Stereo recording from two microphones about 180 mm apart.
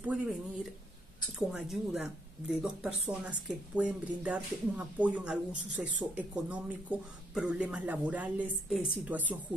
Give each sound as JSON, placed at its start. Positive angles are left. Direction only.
{"t": 0.0, "sound": "speech", "side_deg": -10}
{"t": 1.5, "sound": "speech", "side_deg": -5}